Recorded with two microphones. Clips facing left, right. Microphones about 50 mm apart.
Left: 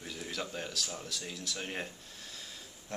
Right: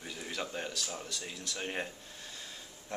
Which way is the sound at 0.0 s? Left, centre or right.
Centre.